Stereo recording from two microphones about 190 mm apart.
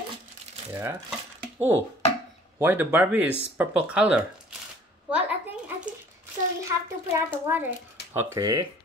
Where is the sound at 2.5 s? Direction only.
10° right (ahead or behind).